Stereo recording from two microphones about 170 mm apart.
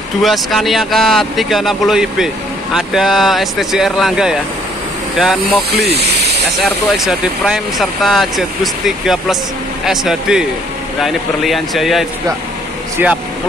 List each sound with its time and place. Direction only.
0.2 s speech: centre (ahead or behind)
5.8 s speech: 70° right (ahead or behind)
6.6 s speech: centre (ahead or behind)